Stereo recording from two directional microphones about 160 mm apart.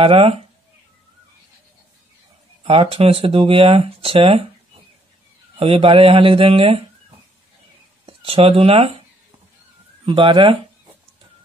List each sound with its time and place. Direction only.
0.0 s speech: 35° right (ahead or behind)
2.6 s speech: 35° right (ahead or behind)
5.6 s speech: 35° right (ahead or behind)
8.0 s speech: 35° right (ahead or behind)
10.0 s speech: 30° right (ahead or behind)